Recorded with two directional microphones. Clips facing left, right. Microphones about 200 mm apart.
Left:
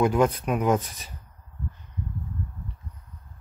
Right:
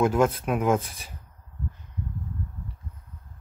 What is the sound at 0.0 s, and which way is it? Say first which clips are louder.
Speech: even; 5° right (ahead or behind).